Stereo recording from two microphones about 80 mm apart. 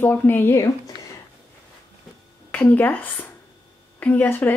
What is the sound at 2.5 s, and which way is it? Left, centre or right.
A woman's voice, left.